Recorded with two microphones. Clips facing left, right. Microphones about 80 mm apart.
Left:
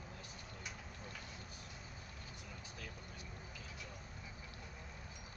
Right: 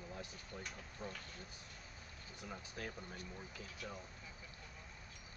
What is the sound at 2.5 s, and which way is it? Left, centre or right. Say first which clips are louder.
Speech: right 8 dB; right.